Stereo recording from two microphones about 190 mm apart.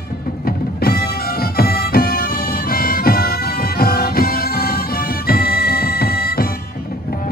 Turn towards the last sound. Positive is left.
turn(degrees=55)  # may be behind; listen again after turning